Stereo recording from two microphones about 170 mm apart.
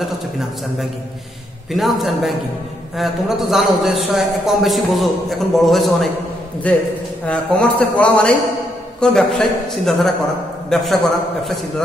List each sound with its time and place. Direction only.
1.7 s a man's voice: centre (ahead or behind)